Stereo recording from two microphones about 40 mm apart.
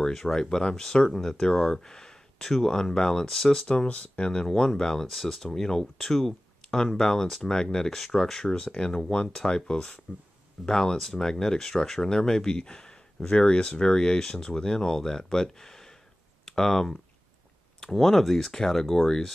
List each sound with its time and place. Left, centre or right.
0.0 s speech: centre
3.6 s speech: left
4.6 s speech: centre
8.5 s speech: left
10.1 s speech: centre
10.6 s speech: centre